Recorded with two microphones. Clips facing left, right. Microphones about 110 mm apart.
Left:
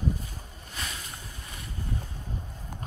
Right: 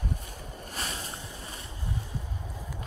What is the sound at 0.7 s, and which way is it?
Boat, 40° right (ahead or behind).